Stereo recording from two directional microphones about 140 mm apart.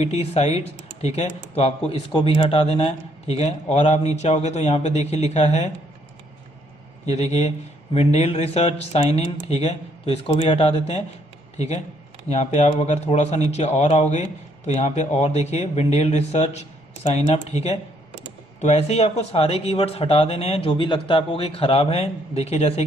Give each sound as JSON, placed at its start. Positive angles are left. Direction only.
{"t": 0.0, "sound": "speech", "side_deg": 50}
{"t": 7.1, "sound": "speech", "side_deg": 50}